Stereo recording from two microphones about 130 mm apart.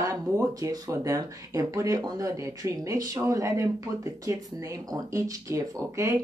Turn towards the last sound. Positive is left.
turn(degrees=-25)  # may be behind; listen again after turning